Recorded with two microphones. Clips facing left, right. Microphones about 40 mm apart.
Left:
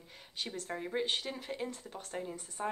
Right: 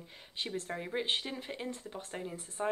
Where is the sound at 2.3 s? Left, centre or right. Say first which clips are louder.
Right 1 dB; right.